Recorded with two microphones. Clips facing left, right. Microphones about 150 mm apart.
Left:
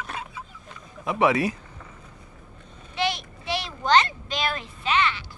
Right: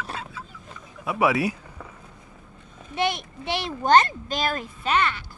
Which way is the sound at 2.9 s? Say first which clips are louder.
Right 2 dB; 55° right (ahead or behind).